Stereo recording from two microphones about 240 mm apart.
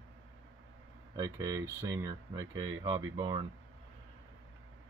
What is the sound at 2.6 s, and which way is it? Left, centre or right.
Speech, right.